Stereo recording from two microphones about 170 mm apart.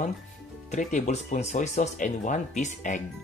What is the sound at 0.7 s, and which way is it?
Speech, 45° left (ahead or behind).